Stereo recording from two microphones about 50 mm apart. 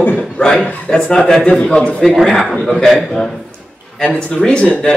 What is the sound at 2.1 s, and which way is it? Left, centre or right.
A man's voice, centre.